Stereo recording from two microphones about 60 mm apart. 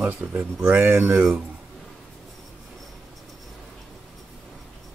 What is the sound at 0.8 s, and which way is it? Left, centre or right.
Speech, right.